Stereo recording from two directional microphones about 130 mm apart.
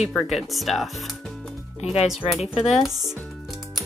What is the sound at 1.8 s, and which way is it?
Speech, 55° left (ahead or behind).